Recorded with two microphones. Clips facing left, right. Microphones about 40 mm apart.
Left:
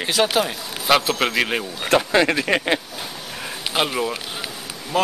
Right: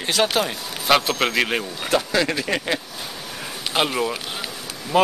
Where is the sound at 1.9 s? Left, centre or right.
Left.